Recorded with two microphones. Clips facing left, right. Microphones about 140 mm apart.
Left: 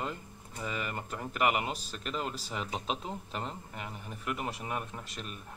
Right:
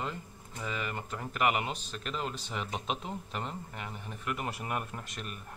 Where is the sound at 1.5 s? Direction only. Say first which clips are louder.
Even; 40° left (ahead or behind).